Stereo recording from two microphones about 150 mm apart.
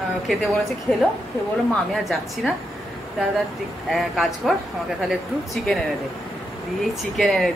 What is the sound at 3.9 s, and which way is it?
Speech, centre (ahead or behind).